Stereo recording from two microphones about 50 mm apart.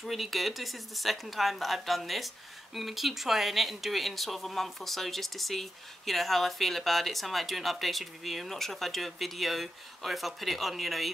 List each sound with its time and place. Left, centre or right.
0.0 s speech: centre